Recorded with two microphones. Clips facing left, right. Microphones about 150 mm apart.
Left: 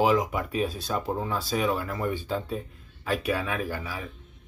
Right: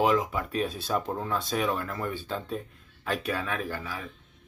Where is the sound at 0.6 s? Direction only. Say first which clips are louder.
Left 1 dB; centre (ahead or behind).